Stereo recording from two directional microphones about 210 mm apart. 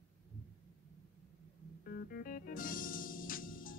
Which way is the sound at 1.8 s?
45° left (ahead or behind).